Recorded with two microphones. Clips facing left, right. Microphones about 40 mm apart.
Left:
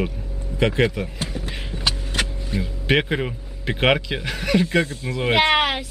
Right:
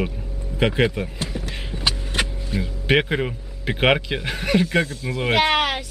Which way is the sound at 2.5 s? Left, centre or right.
Centre.